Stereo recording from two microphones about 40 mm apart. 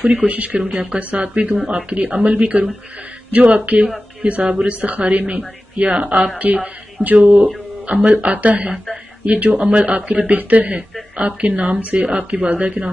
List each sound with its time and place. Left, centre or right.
0.0 s a woman's voice: right
12.0 s speech: right
12.4 s a woman's voice: right